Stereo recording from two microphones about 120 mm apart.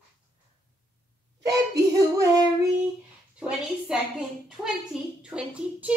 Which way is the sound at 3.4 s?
10° right (ahead or behind).